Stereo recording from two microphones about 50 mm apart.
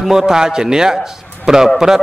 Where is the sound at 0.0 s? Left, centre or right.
Centre.